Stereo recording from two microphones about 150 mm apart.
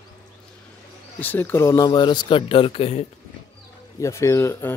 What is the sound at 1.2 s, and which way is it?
Speech, 10° left (ahead or behind).